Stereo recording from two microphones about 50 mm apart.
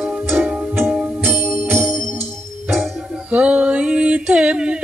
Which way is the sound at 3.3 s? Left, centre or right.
Right.